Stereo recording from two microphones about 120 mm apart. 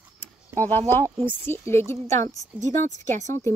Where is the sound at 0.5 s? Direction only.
15° left (ahead or behind).